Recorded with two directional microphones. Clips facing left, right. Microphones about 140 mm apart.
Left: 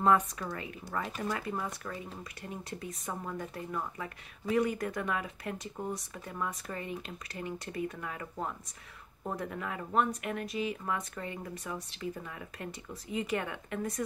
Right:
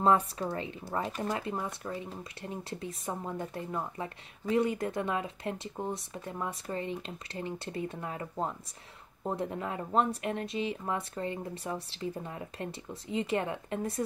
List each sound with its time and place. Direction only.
0.0 s a woman's voice: 30° right (ahead or behind)